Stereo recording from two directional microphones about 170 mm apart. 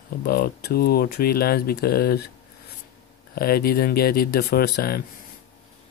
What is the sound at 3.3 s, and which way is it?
Speech, 60° left (ahead or behind).